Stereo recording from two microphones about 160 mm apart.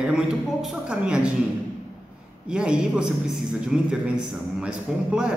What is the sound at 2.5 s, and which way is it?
Speech, 5° right (ahead or behind).